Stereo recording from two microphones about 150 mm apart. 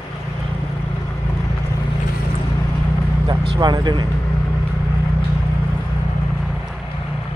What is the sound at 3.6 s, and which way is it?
Speech, 30° right (ahead or behind).